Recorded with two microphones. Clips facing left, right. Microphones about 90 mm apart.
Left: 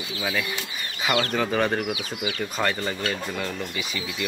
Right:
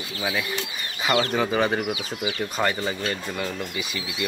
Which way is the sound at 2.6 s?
10° right (ahead or behind).